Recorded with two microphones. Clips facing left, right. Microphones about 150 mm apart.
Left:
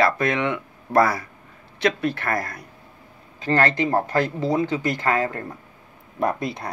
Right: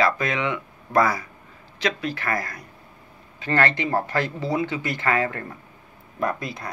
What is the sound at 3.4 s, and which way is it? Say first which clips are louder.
Speech: left 2 dB; 40° left (ahead or behind).